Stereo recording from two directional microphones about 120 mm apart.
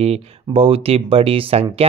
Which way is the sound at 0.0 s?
55° right (ahead or behind).